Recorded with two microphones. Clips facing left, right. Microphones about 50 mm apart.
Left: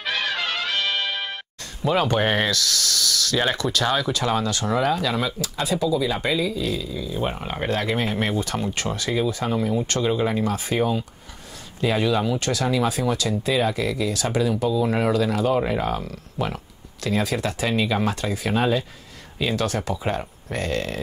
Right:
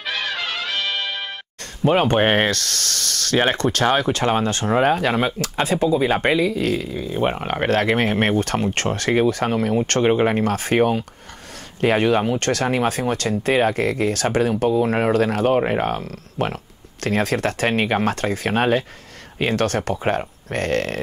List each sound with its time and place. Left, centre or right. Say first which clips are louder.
0.0 s music: even; centre
1.8 s speech: right 4 dB; right